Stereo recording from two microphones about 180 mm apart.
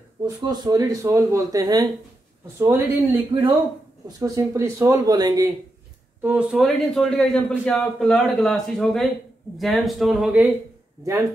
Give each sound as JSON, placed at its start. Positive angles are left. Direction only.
{"t": 0.2, "sound": "speech", "side_deg": -25}
{"t": 6.2, "sound": "a man's voice", "side_deg": -5}